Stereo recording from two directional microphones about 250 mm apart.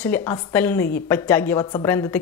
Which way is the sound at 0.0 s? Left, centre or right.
Centre.